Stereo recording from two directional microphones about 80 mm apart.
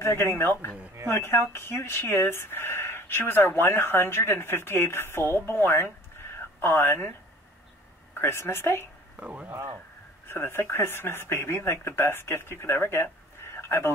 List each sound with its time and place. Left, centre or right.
0.0 s speech: left
8.2 s speech: left
9.2 s speech: centre
10.2 s speech: left